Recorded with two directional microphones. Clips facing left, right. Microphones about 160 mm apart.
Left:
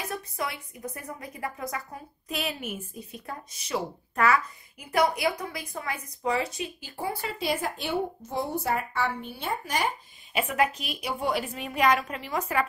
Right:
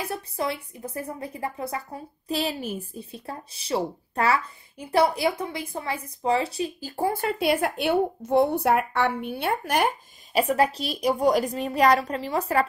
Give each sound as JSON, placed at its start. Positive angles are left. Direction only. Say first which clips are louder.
{"t": 0.1, "sound": "a woman's voice", "louder": "right 4 dB", "side_deg": -30}
{"t": 10.3, "sound": "a woman's voice", "louder": "right 4 dB", "side_deg": -35}